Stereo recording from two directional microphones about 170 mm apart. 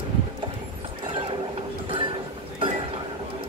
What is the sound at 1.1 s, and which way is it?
Clip-clop, 30° right (ahead or behind).